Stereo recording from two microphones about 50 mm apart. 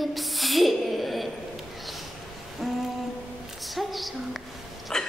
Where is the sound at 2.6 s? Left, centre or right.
Centre.